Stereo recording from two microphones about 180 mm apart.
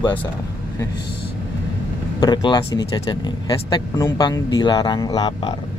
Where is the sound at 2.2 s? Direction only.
25° left (ahead or behind).